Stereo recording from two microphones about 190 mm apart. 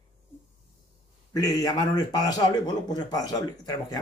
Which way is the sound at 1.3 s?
20° left (ahead or behind).